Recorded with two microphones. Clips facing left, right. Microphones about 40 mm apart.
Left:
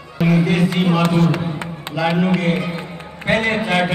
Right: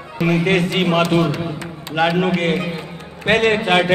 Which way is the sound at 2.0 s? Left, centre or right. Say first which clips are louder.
Right 1 dB; right.